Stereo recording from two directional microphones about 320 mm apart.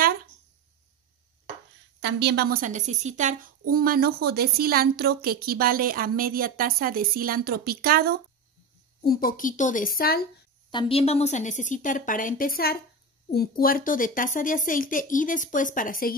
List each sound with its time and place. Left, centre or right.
2.0 s a woman's voice: right
9.0 s speech: left
10.7 s speech: centre